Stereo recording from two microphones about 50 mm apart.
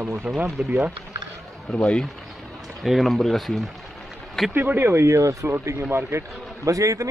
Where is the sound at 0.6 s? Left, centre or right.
Right.